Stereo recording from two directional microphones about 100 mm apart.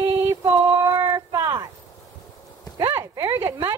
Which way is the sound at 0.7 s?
35° right (ahead or behind).